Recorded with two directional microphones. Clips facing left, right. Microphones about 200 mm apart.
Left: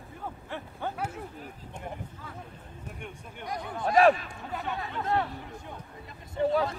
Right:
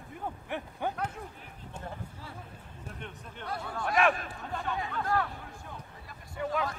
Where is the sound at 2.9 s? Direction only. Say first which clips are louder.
Left 1 dB; 10° left (ahead or behind).